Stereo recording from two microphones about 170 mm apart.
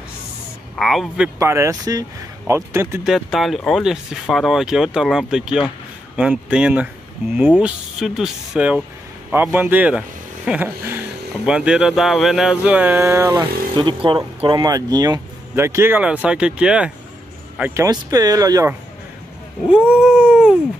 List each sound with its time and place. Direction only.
0.7 s speech: centre (ahead or behind)
1.4 s speech: 15° right (ahead or behind)
3.0 s speech: centre (ahead or behind)
13.7 s speech: 30° right (ahead or behind); by 17.8 s 10° right (ahead or behind)
17.8 s speech: 20° right (ahead or behind)
19.7 s dog: 5° right (ahead or behind)